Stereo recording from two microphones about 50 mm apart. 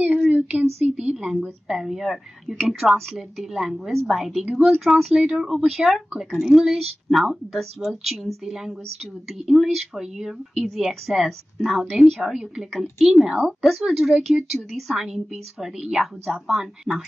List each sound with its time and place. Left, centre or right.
0.0 s a sound: centre
0.9 s speech: centre
5.1 s speech: centre